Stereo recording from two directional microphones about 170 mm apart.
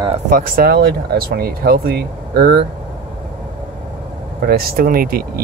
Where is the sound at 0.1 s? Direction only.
55° right (ahead or behind).